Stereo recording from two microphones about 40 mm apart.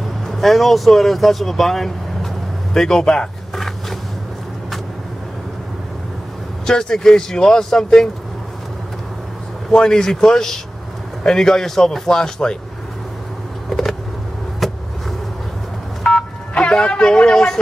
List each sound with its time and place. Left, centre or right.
0.3 s speech: centre
3.5 s a sound: centre
6.6 s speech: centre
9.7 s speech: centre
13.7 s vehicle: centre
16.0 s vehicle: left